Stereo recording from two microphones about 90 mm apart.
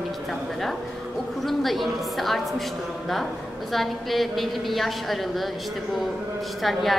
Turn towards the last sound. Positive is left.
turn(degrees=0)  # may be behind; listen again after turning